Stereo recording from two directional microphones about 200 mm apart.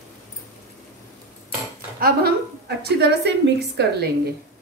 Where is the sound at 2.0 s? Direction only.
50° right (ahead or behind).